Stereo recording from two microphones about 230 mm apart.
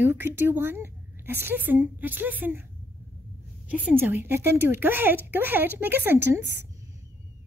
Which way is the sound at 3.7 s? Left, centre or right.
Centre.